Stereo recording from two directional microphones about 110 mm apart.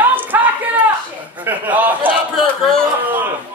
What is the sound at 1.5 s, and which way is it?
Speech, 15° right (ahead or behind).